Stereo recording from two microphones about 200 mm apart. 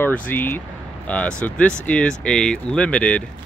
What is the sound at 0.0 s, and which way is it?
Speech, 10° left (ahead or behind).